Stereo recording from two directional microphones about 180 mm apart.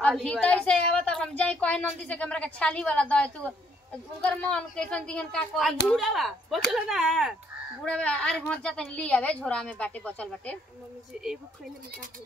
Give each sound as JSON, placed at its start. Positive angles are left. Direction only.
{"t": 0.0, "sound": "a woman's voice", "side_deg": 5}